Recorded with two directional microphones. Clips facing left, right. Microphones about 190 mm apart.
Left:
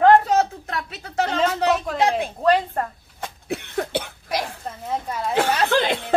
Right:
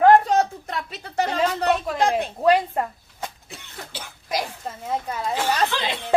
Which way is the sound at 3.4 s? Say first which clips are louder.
Left 14 dB; 65° left (ahead or behind).